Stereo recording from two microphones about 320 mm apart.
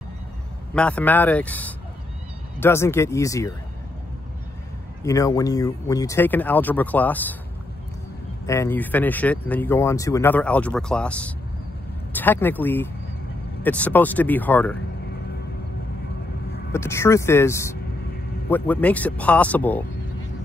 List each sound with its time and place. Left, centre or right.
0.7 s speech: centre
5.0 s speech: centre
8.5 s speech: centre
16.7 s speech: centre